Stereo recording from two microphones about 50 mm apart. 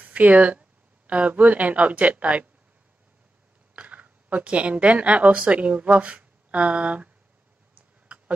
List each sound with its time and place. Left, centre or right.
0.0 s speech: right
3.7 s speech: right